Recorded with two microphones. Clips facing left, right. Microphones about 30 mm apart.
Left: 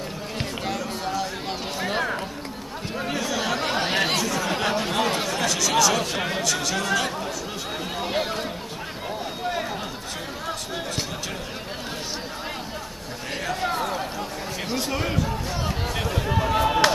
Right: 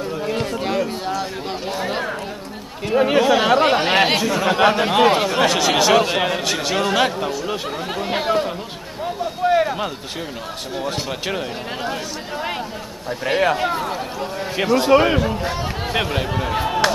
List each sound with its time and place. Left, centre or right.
0.5 s a sound: centre
2.9 s speech: right
8.1 s chatter: right
9.5 s a sound: right
13.2 s speech: right
13.7 s speech: centre
14.8 s speech: right
16.3 s speech: centre
16.6 s speech: centre